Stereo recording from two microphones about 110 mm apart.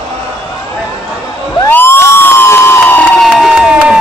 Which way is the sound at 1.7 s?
20° left (ahead or behind).